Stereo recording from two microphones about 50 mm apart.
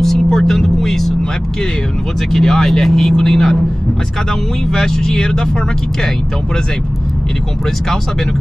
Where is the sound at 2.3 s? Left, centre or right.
Centre.